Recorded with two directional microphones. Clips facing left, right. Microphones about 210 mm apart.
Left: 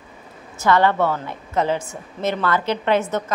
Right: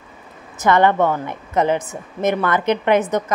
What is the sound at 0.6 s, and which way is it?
A woman's voice, 20° right (ahead or behind).